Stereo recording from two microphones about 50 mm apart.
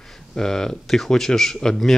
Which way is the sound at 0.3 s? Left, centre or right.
Centre.